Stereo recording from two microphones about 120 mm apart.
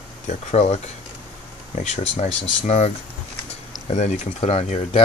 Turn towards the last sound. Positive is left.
turn(degrees=55)  # may be behind; listen again after turning